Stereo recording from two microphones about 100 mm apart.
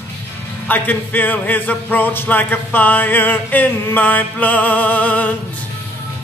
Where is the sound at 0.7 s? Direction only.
15° left (ahead or behind).